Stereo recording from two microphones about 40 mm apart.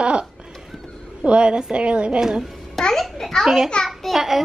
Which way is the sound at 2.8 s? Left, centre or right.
Centre.